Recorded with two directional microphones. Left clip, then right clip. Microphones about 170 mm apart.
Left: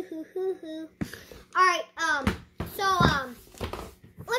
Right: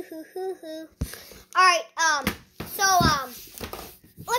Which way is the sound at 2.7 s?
15° left (ahead or behind).